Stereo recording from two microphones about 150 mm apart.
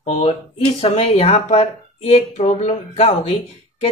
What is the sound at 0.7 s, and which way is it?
Speech, 40° left (ahead or behind).